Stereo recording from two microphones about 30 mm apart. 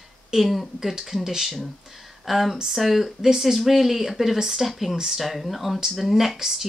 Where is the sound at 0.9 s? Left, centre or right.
Centre.